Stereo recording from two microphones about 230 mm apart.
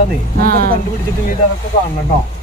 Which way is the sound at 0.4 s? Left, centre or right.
Right.